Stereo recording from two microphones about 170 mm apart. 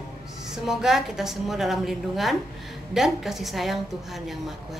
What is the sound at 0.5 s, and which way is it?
A woman's voice, centre (ahead or behind).